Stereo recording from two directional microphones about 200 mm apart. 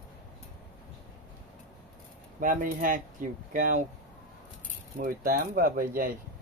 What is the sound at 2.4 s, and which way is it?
Speech, 40° right (ahead or behind).